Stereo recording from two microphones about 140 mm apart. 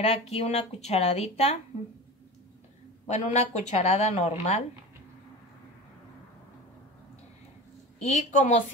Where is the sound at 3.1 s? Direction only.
55° left (ahead or behind).